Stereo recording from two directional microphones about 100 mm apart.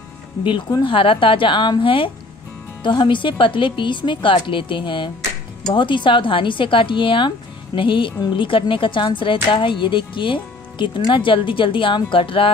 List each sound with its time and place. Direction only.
0.4 s a woman's voice: 55° left (ahead or behind)